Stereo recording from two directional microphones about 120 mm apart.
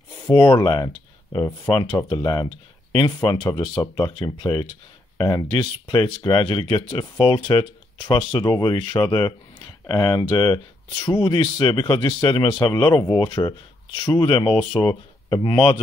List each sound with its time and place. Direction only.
0.3 s speech: 40° left (ahead or behind)
1.7 s speech: 45° left (ahead or behind)
2.0 s speech: 35° left (ahead or behind); by 15.8 s 50° left (ahead or behind)